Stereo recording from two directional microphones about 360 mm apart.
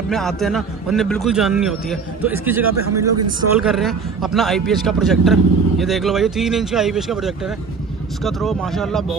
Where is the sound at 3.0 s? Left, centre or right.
Right.